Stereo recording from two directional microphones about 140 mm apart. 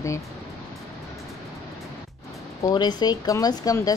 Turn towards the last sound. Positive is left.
turn(degrees=25)  # may be behind; listen again after turning